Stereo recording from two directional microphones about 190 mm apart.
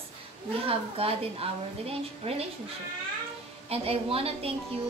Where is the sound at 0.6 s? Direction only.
30° right (ahead or behind).